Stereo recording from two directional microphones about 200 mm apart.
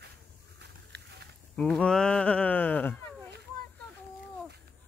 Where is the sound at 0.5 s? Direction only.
55° right (ahead or behind).